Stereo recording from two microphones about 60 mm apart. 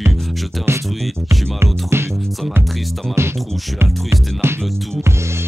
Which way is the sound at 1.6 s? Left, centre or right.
Right.